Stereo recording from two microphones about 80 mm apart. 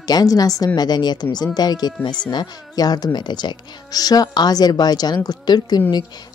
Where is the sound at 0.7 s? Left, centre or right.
Left.